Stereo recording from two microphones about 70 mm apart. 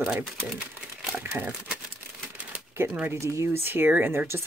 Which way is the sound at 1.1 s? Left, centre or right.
Right.